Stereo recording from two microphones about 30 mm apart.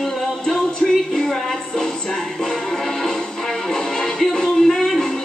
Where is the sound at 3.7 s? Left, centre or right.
Centre.